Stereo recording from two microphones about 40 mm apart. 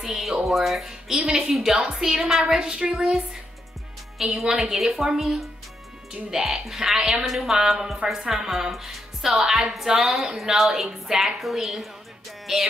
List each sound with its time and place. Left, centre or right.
0.0 s a woman's voice: centre
1.8 s a woman's voice: centre
4.4 s a woman's voice: centre